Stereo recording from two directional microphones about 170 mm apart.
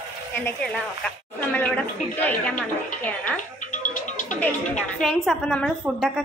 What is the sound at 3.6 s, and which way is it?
Music, 50° left (ahead or behind).